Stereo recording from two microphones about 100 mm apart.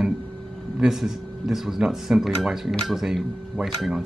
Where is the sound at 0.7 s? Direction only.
5° right (ahead or behind).